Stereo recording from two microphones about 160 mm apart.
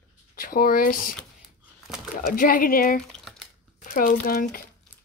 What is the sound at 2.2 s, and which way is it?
Speech, 60° left (ahead or behind).